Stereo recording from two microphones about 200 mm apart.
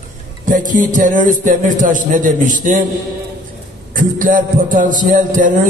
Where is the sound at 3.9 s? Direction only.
40° right (ahead or behind).